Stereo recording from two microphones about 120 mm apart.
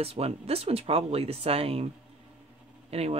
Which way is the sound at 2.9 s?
60° right (ahead or behind).